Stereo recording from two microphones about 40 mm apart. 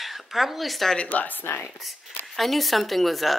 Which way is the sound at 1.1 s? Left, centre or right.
Left.